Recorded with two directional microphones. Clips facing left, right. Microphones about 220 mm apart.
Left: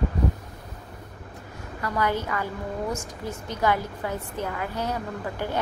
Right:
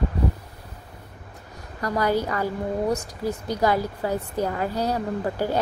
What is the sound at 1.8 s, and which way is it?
Speech, 35° right (ahead or behind).